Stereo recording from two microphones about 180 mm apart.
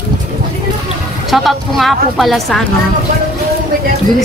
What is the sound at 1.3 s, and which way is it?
A woman's voice, centre (ahead or behind).